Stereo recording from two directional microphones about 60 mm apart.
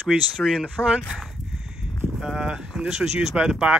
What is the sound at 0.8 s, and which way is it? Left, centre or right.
Speech, left.